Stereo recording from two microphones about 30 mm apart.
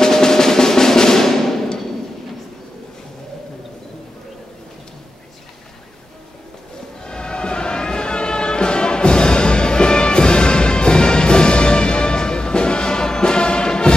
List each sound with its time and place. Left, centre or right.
0.0 s drum roll: centre
7.1 s music: left